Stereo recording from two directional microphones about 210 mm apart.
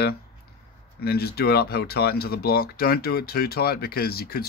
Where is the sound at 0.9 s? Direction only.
50° left (ahead or behind).